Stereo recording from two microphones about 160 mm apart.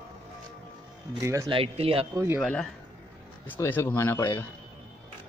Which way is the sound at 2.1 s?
20° right (ahead or behind).